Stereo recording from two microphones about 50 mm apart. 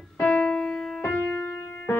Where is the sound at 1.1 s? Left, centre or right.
Left.